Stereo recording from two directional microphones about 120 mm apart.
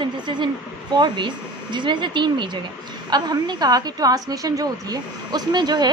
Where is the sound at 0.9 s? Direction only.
40° right (ahead or behind).